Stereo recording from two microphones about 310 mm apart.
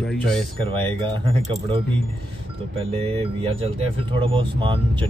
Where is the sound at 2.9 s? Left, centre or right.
Centre.